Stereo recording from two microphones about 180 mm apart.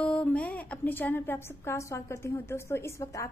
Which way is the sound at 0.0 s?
5° left (ahead or behind).